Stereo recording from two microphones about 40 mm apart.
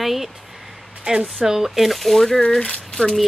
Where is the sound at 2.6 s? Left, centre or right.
Left.